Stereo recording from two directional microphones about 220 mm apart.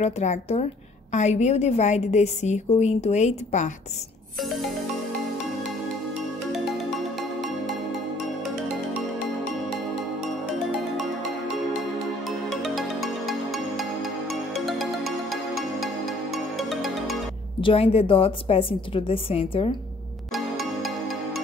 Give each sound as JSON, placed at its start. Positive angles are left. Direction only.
{"t": 0.0, "sound": "a woman's voice", "side_deg": 30}
{"t": 7.2, "sound": "music", "side_deg": 0}
{"t": 12.3, "sound": "music", "side_deg": 0}
{"t": 17.6, "sound": "a woman's voice", "side_deg": 25}
{"t": 20.3, "sound": "music", "side_deg": 0}